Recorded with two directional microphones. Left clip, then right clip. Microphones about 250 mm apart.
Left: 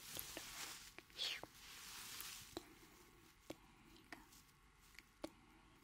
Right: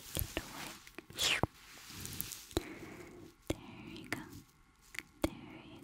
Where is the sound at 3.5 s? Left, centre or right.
Right.